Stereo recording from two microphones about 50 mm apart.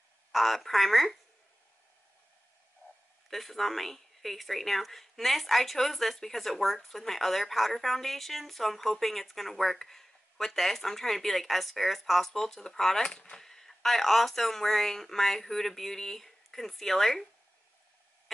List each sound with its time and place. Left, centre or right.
0.3 s a woman's voice: centre
3.3 s speech: centre